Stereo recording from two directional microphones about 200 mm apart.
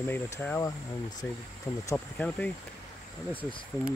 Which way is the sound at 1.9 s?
5° left (ahead or behind).